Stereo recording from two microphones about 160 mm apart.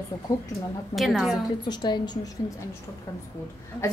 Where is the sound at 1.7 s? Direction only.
25° left (ahead or behind).